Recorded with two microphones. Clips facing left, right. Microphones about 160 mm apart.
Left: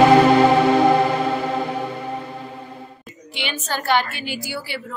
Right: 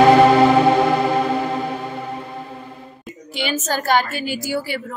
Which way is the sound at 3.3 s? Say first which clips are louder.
Right 5 dB; 40° right (ahead or behind).